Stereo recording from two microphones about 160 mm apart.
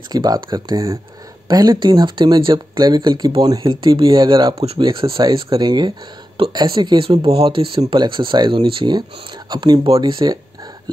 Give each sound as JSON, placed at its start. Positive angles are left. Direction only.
{"t": 0.1, "sound": "speech", "side_deg": -25}